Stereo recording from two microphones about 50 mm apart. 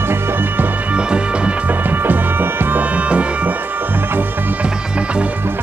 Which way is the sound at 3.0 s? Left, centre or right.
Right.